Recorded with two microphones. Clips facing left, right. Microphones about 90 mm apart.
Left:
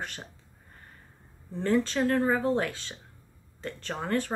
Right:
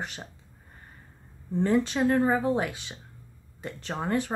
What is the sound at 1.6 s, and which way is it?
Speech, 15° right (ahead or behind).